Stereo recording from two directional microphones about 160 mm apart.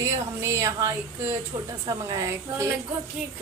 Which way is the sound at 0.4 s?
20° right (ahead or behind).